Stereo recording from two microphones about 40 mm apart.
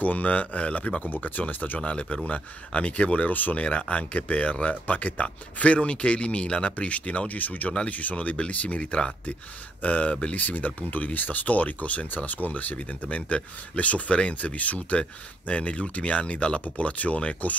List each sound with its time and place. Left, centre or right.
0.0 s speech: left
1.1 s speech: left
1.8 s speech: left
3.6 s speech: left
12.7 s speech: left